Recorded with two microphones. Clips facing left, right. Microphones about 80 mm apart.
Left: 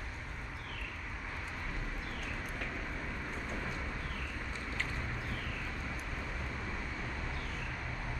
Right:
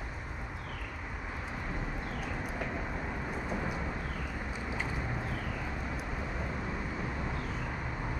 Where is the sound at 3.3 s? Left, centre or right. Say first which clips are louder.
Right 5 dB; centre.